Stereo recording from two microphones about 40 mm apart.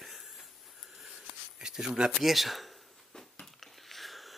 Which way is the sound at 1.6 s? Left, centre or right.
Centre.